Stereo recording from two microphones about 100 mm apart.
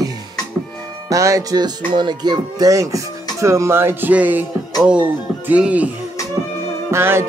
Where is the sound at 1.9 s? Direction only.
50° right (ahead or behind); by 5.9 s 15° right (ahead or behind).